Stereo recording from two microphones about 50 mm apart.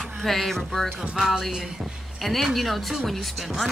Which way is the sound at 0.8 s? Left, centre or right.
Centre.